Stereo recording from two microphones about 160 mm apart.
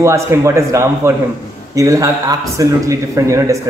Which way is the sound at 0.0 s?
20° right (ahead or behind).